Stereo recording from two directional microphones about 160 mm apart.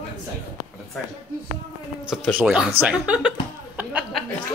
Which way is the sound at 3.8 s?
10° right (ahead or behind).